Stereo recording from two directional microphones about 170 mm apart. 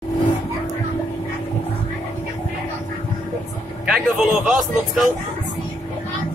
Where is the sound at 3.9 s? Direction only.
5° right (ahead or behind).